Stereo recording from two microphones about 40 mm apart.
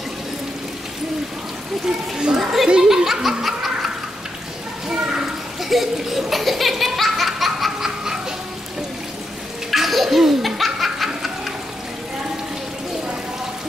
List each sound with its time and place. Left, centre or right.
2.1 s speech: centre
2.7 s laughter: centre
4.8 s a sound: centre
5.6 s laughter: centre
9.7 s laughter: centre